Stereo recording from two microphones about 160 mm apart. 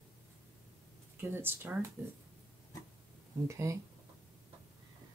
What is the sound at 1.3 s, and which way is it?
Speech, 15° right (ahead or behind).